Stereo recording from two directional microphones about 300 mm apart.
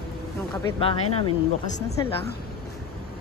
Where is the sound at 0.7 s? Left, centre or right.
Centre.